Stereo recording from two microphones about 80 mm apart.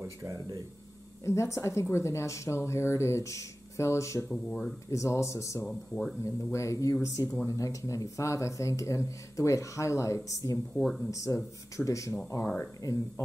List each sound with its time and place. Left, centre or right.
0.0 s speech: right
1.2 s speech: left
4.3 s speech: centre
4.9 s speech: left
5.7 s speech: centre
6.2 s speech: left